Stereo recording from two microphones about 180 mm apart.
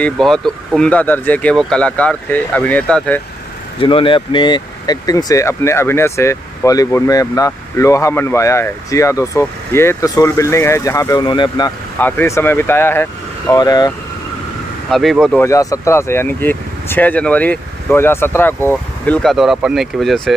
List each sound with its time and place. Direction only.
0.0 s speech: 5° left (ahead or behind)
3.8 s speech: 30° left (ahead or behind)
12.0 s speech: 10° left (ahead or behind)
14.9 s speech: centre (ahead or behind)
15.4 s speech: 15° left (ahead or behind); by 20.3 s centre (ahead or behind)